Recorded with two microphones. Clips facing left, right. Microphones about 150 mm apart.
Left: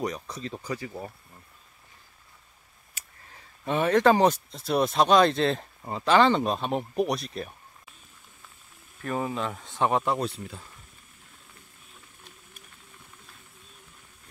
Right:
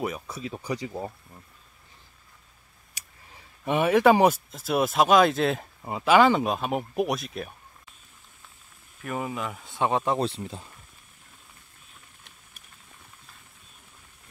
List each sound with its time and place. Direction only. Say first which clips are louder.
0.0 s speech: even; 5° right (ahead or behind)
3.6 s speech: right 2 dB; 10° right (ahead or behind)
9.0 s speech: left 2 dB; 10° right (ahead or behind)
9.8 s speech: right 1 dB; 20° right (ahead or behind)